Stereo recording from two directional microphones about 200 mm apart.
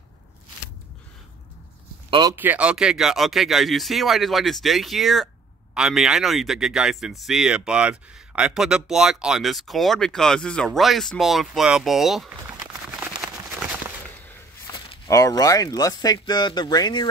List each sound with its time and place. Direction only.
2.0 s a sound: 25° right (ahead or behind)
2.3 s speech: 10° right (ahead or behind)
15.0 s speech: 15° left (ahead or behind)